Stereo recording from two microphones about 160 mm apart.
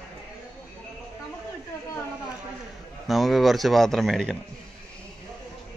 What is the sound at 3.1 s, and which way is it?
Speech, centre (ahead or behind).